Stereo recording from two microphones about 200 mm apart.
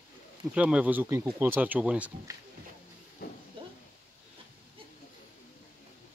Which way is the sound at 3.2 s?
50° left (ahead or behind).